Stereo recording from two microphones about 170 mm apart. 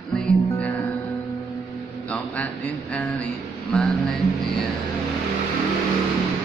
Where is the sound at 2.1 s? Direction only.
5° left (ahead or behind).